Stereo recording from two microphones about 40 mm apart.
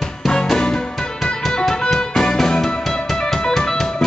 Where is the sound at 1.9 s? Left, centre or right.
Centre.